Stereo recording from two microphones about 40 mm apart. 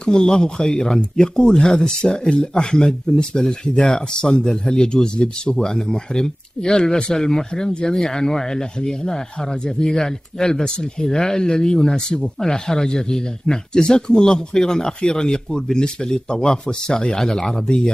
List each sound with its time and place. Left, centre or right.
0.0 s speech: centre